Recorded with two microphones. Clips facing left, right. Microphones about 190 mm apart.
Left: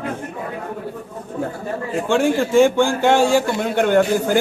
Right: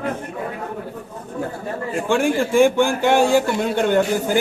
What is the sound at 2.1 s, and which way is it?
A man's voice, 15° right (ahead or behind).